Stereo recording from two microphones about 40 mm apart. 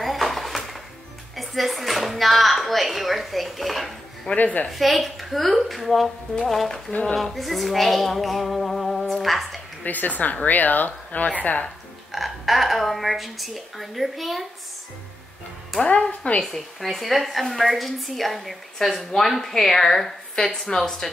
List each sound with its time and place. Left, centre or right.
0.0 s a sound: centre
1.3 s speech: centre
4.4 s speech: left
4.6 s a woman's voice: centre
6.9 s speech: left
7.3 s a woman's voice: centre
9.8 s speech: left
12.1 s a woman's voice: centre
15.8 s speech: left
16.4 s a woman's voice: centre